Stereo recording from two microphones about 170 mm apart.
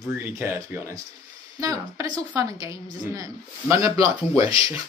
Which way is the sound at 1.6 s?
20° right (ahead or behind).